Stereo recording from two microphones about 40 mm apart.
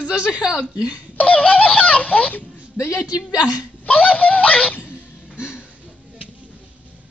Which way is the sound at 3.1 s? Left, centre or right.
Right.